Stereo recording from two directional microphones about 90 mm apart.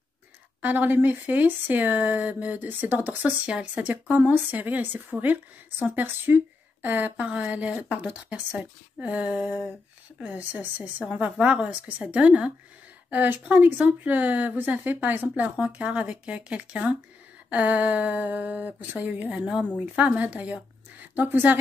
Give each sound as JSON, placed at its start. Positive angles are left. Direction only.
{"t": 0.6, "sound": "speech", "side_deg": -20}